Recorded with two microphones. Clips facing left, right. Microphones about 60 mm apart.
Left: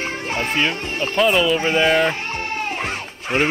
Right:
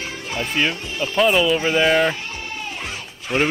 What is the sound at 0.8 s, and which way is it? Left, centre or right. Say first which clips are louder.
Speech: left 2 dB; left.